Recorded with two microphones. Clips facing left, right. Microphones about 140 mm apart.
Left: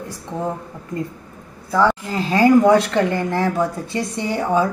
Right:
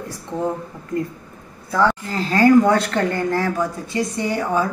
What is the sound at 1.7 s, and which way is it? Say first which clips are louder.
Speech: left 1 dB; 10° left (ahead or behind).